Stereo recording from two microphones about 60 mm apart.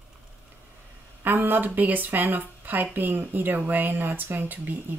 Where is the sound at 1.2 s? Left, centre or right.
Right.